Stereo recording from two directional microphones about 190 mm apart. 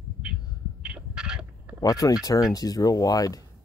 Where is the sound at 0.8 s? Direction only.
5° right (ahead or behind).